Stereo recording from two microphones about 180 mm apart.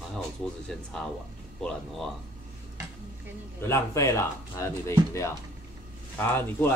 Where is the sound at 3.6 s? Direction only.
15° left (ahead or behind).